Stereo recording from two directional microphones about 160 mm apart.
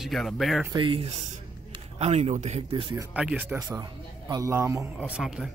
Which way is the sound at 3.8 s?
20° right (ahead or behind).